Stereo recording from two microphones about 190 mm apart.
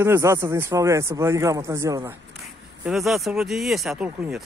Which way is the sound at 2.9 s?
Centre (ahead or behind).